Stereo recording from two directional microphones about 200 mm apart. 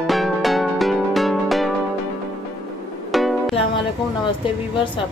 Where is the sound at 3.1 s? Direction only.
Centre (ahead or behind).